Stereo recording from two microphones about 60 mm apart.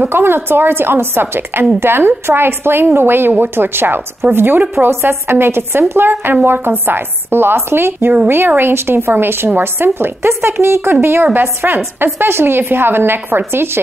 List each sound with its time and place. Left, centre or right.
0.1 s a woman's voice: right